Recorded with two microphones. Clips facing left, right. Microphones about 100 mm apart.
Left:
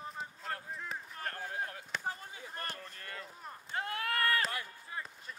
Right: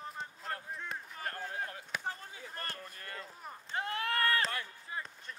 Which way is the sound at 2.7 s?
10° right (ahead or behind).